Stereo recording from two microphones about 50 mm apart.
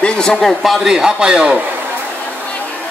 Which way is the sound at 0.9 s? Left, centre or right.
Centre.